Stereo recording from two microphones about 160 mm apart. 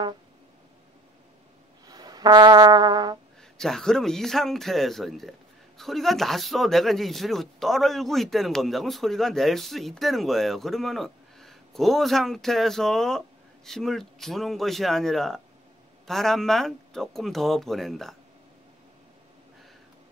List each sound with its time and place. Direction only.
1.9 s brass instrument: 25° right (ahead or behind)
3.5 s speech: 5° left (ahead or behind)